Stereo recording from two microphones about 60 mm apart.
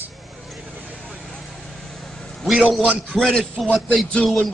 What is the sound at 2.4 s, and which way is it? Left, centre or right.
Speech, centre.